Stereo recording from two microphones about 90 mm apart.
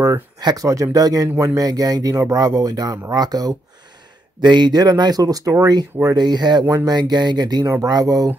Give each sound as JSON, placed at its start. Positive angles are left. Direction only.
{"t": 0.4, "sound": "speech", "side_deg": -50}
{"t": 7.6, "sound": "speech", "side_deg": -35}